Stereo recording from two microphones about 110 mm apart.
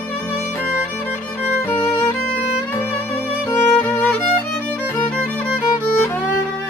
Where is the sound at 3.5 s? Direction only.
20° left (ahead or behind).